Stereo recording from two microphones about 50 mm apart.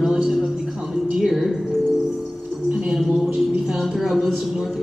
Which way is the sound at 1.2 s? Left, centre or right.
Centre.